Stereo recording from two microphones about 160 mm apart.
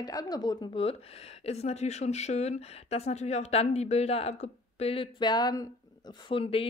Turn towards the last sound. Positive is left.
turn(degrees=35)  # may be behind; listen again after turning